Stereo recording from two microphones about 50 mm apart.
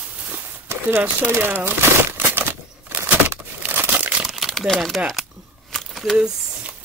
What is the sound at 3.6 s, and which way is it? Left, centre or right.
Crumpling, right.